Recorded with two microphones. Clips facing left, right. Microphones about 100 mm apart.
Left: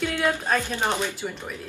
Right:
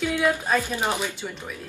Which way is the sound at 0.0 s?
5° right (ahead or behind).